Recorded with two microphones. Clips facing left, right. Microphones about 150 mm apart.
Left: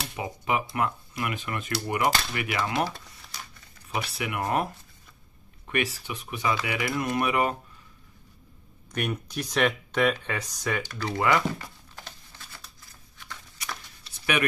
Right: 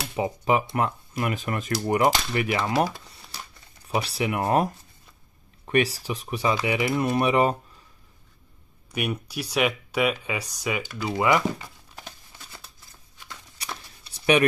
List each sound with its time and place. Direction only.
0.1 s speech: 30° right (ahead or behind)
3.9 s speech: 30° right (ahead or behind)
5.7 s speech: 35° right (ahead or behind)
8.9 s speech: 10° right (ahead or behind)
11.1 s speech: 15° right (ahead or behind)
13.6 s a sound: 35° right (ahead or behind)